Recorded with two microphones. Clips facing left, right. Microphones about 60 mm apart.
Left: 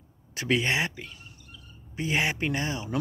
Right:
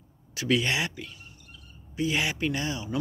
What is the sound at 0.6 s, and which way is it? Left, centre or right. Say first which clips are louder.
Speech: left 1 dB; left.